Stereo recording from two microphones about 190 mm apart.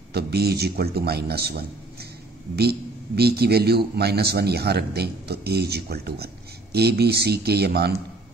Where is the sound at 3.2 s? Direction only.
60° right (ahead or behind).